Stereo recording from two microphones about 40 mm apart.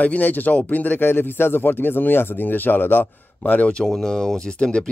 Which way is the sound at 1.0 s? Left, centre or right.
Left.